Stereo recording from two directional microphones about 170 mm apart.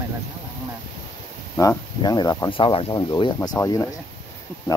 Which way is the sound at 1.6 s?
20° left (ahead or behind).